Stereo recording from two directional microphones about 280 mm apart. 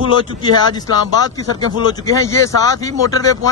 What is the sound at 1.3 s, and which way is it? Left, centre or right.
Speech, centre.